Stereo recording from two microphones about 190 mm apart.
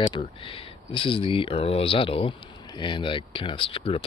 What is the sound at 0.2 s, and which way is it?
Speech, 30° left (ahead or behind).